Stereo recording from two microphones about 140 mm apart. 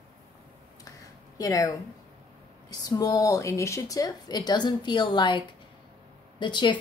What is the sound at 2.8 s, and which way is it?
Speech, 25° left (ahead or behind).